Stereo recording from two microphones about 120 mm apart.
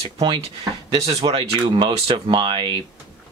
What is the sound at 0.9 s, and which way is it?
Speech, 55° right (ahead or behind).